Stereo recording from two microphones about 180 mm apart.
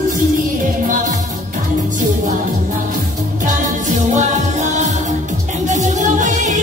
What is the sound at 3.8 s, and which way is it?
Music, 40° right (ahead or behind).